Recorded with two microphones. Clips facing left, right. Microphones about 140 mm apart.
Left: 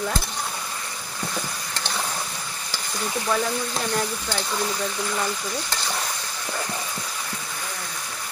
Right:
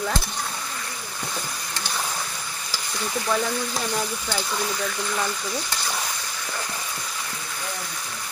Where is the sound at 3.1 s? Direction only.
Centre (ahead or behind).